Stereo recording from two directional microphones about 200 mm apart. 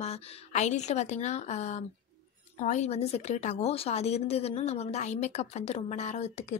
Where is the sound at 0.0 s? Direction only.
35° left (ahead or behind).